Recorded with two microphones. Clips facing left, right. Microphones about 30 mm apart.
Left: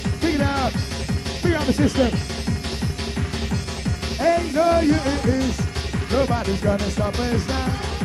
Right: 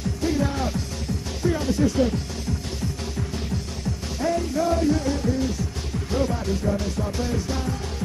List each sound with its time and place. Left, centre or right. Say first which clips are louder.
0.2 s music: left 4 dB; left
1.4 s speech: left 3 dB; left
4.2 s speech: left 5 dB; left
6.3 s music: left 4 dB; left